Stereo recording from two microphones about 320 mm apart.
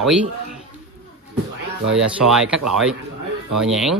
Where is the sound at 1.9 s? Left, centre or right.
Centre.